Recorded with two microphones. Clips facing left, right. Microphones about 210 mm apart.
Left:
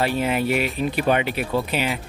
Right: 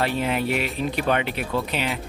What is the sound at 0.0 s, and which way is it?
A man's voice, 5° left (ahead or behind).